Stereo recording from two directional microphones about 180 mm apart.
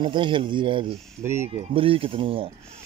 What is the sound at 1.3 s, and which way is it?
Speech, 40° right (ahead or behind).